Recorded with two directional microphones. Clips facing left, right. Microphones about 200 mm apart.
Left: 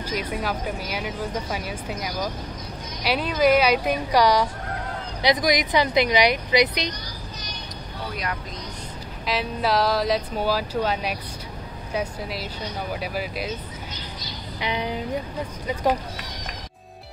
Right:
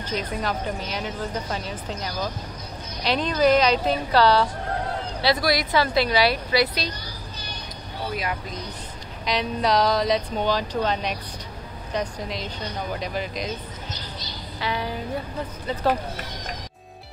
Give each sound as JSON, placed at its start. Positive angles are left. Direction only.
{"t": 0.0, "sound": "a woman's voice", "side_deg": 10}
{"t": 9.2, "sound": "a woman's voice", "side_deg": 5}
{"t": 14.6, "sound": "a woman's voice", "side_deg": 20}